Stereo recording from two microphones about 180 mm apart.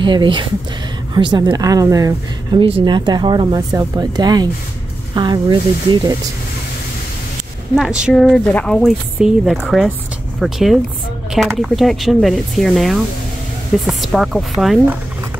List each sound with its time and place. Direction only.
0.0 s speech: 25° right (ahead or behind)
7.7 s speech: centre (ahead or behind)